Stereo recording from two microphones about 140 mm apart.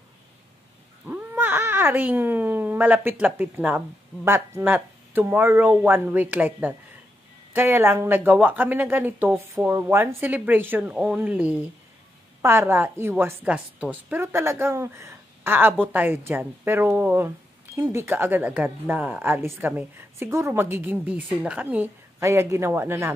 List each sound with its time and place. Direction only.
1.0 s a woman's voice: 15° right (ahead or behind)